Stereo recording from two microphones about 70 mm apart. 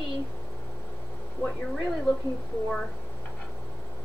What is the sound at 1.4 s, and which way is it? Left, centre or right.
Speech, left.